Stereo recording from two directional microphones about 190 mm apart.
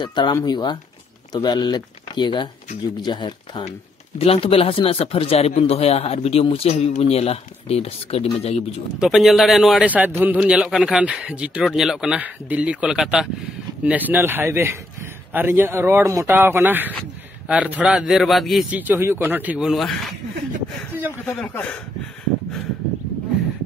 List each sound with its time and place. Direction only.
0.0 s speech: 25° left (ahead or behind)
9.0 s a man's voice: centre (ahead or behind)
21.3 s speech: 5° left (ahead or behind)